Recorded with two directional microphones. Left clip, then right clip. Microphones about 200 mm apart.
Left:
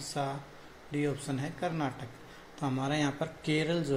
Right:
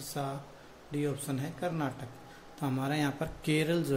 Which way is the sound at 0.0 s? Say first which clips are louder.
Left 2 dB; 10° right (ahead or behind).